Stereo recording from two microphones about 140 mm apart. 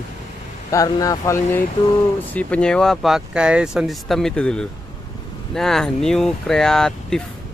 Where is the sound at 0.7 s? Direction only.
25° left (ahead or behind).